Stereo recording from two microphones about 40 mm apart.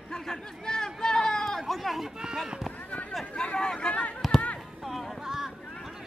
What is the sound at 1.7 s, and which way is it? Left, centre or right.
Speech, centre.